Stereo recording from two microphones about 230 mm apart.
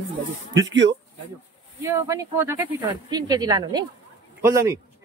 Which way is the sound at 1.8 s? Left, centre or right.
Centre.